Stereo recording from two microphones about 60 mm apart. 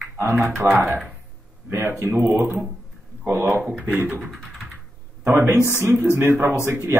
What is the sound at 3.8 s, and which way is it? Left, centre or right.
Speech, right.